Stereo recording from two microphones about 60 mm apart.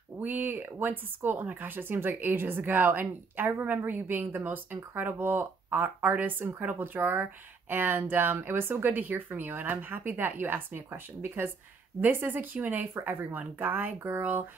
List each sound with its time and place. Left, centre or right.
0.2 s speech: right